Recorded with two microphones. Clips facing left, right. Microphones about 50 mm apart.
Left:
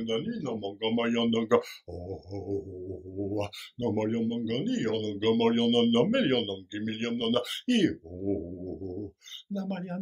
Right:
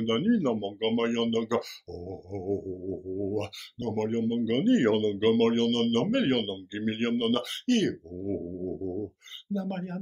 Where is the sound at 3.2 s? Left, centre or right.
Centre.